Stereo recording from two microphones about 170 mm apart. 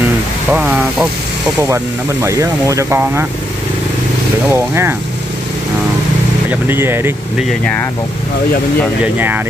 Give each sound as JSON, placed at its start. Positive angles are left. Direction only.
{"t": 0.5, "sound": "speech", "side_deg": -10}
{"t": 2.2, "sound": "speech", "side_deg": -20}
{"t": 4.5, "sound": "speech", "side_deg": -15}
{"t": 6.5, "sound": "speech", "side_deg": -15}
{"t": 9.0, "sound": "speech", "side_deg": -10}